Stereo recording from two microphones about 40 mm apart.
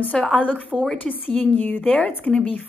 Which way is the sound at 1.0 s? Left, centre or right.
Left.